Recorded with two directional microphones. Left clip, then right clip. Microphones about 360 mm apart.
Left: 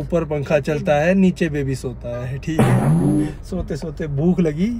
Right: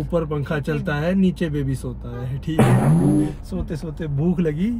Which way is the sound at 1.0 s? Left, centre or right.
Left.